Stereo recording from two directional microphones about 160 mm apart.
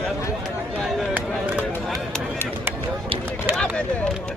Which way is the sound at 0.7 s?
Centre (ahead or behind).